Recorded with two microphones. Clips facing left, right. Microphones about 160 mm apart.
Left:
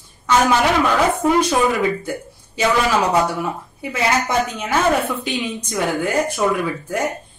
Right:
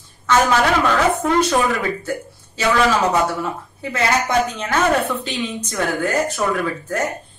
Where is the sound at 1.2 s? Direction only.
10° left (ahead or behind).